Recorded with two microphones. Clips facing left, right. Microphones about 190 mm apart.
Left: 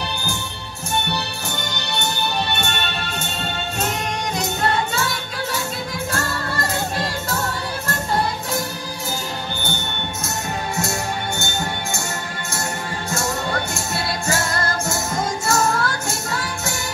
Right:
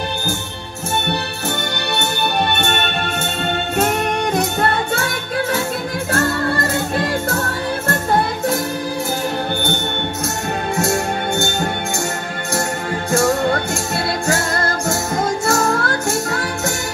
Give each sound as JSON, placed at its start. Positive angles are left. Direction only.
{"t": 2.0, "sound": "music", "side_deg": -55}
{"t": 14.2, "sound": "music", "side_deg": -55}